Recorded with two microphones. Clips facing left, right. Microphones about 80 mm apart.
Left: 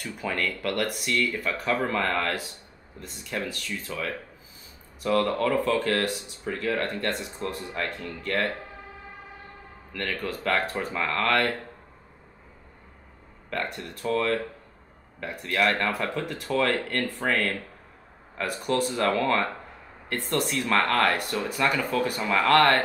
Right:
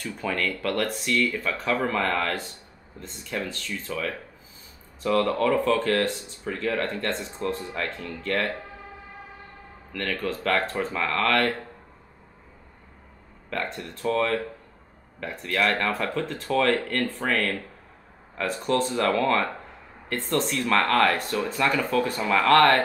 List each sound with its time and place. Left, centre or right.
0.0 s speech: centre
9.9 s speech: centre
13.5 s speech: centre